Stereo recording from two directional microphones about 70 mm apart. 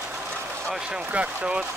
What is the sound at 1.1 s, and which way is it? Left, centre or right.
Speech, centre.